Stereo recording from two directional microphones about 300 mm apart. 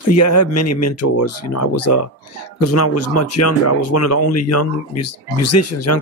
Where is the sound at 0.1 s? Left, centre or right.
Left.